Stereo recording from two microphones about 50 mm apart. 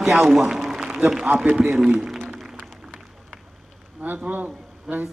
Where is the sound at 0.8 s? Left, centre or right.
Centre.